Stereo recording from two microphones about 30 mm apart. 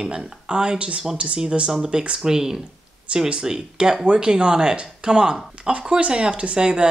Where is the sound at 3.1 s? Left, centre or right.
Right.